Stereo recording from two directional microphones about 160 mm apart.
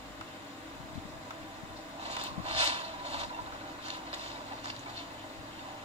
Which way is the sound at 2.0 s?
40° right (ahead or behind).